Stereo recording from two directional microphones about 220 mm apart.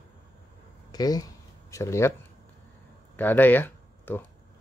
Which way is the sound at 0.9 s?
20° left (ahead or behind).